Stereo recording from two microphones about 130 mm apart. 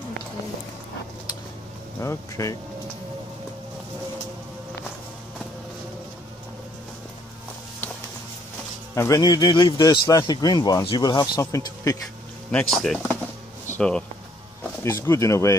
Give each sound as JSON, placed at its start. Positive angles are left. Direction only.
{"t": 2.0, "sound": "speech", "side_deg": 25}
{"t": 8.9, "sound": "a man's voice", "side_deg": 25}
{"t": 12.4, "sound": "speech", "side_deg": 5}
{"t": 14.8, "sound": "speech", "side_deg": 20}